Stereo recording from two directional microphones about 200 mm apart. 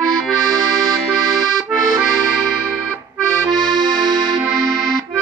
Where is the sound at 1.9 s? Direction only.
Centre (ahead or behind).